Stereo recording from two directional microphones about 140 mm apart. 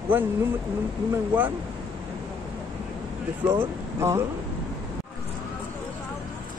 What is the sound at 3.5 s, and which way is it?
Speech, 20° right (ahead or behind).